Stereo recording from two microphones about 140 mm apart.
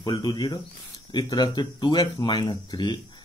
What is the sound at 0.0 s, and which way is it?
Speech, 25° left (ahead or behind).